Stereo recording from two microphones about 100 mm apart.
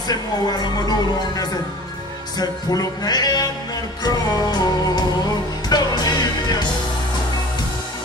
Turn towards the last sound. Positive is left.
turn(degrees=45)  # may be behind; listen again after turning